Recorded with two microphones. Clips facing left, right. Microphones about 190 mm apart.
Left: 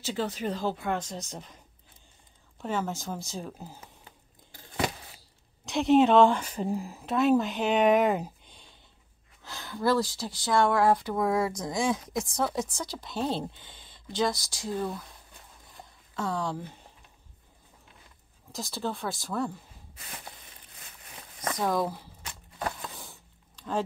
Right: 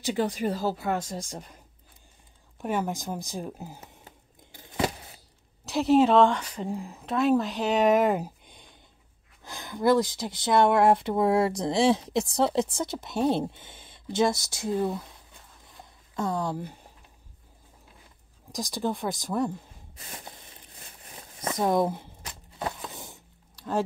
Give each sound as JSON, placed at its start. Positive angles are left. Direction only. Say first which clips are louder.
{"t": 0.0, "sound": "speech", "louder": "right 4 dB", "side_deg": -15}
{"t": 2.6, "sound": "speech", "louder": "right 2 dB", "side_deg": -15}
{"t": 5.7, "sound": "speech", "louder": "right 1 dB", "side_deg": -5}
{"t": 16.2, "sound": "speech", "louder": "right 2 dB", "side_deg": -15}
{"t": 18.5, "sound": "speech", "louder": "right 4 dB", "side_deg": -15}
{"t": 20.8, "sound": "a sound", "louder": "right 1 dB", "side_deg": -25}